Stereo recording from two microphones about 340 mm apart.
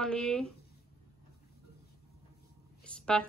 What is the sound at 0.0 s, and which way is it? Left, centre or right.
Speech, centre.